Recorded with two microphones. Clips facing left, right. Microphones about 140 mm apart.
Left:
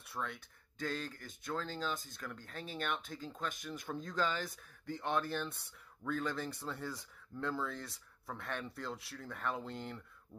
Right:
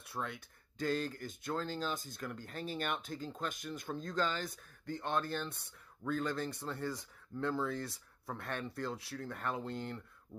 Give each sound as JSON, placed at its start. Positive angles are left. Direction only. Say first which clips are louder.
{"t": 0.0, "sound": "speech", "louder": "right 1 dB", "side_deg": 0}